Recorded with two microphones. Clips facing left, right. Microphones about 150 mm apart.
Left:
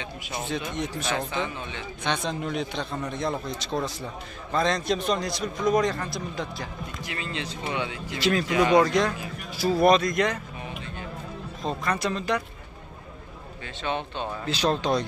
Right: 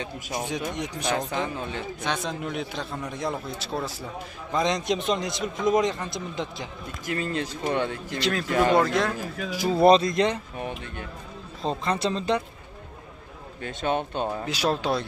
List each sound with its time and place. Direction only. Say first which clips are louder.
0.3 s speech: right 1 dB; 15° right (ahead or behind)
1.3 s a man's voice: right 2 dB; 40° right (ahead or behind)
2.0 s speech: left 2 dB; 5° right (ahead or behind); by 6.7 s 20° right (ahead or behind)
7.1 s speech: right 7 dB; 45° right (ahead or behind)
8.2 s speech: left 3 dB; centre (ahead or behind)
8.5 s speech: right 3 dB; 50° right (ahead or behind)
8.8 s speech: left 1 dB; centre (ahead or behind)
9.5 s speech: right 2 dB; 20° right (ahead or behind)
11.6 s speech: right 2 dB; 25° right (ahead or behind)
13.7 s speech: right 4 dB; 45° right (ahead or behind)
14.4 s speech: left 5 dB; 10° right (ahead or behind)